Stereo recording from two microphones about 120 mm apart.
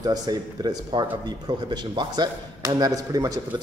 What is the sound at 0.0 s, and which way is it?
A man's voice, 35° right (ahead or behind).